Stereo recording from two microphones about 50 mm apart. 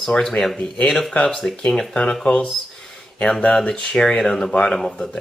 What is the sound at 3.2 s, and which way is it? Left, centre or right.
Speech, centre.